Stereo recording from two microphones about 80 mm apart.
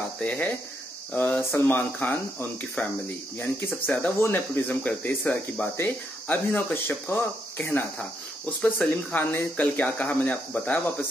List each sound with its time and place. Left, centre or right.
0.2 s speech: centre